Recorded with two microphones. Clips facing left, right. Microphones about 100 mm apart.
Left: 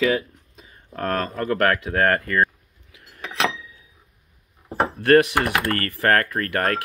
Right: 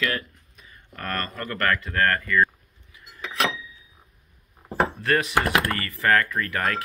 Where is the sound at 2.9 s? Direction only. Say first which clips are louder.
Left 1 dB; 90° left.